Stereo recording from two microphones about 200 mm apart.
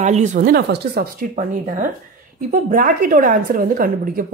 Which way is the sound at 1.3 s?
40° right (ahead or behind).